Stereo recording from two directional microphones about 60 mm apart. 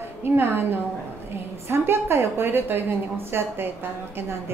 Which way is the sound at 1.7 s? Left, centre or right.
Right.